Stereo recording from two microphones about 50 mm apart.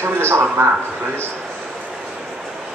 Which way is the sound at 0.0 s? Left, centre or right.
Right.